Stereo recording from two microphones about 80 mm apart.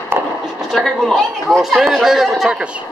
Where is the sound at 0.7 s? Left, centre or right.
Centre.